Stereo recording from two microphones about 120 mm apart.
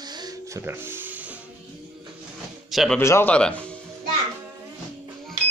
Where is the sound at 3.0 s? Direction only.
20° left (ahead or behind).